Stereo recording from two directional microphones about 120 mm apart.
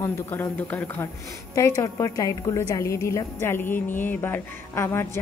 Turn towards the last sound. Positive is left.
turn(degrees=20)  # may be behind; listen again after turning